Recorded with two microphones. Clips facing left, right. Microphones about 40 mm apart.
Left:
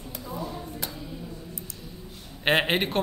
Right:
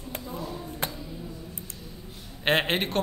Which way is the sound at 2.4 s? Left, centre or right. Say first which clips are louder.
Left 1 dB; centre.